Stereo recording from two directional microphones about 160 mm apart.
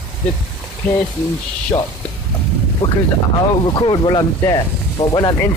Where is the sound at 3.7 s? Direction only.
30° left (ahead or behind).